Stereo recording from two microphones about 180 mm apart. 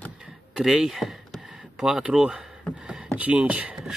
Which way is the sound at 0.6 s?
Centre (ahead or behind).